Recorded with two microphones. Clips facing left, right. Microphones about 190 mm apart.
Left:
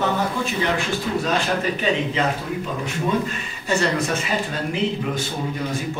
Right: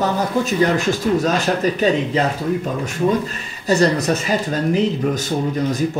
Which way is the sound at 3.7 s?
40° right (ahead or behind).